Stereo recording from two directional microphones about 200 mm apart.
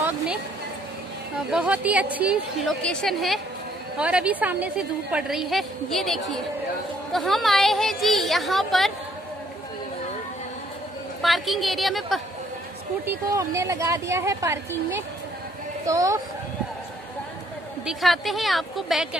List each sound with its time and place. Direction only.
1.5 s a woman's voice: 5° right (ahead or behind)
11.2 s a woman's voice: centre (ahead or behind)
13.0 s speech: 10° right (ahead or behind)
15.8 s speech: 15° right (ahead or behind)
17.8 s a woman's voice: centre (ahead or behind)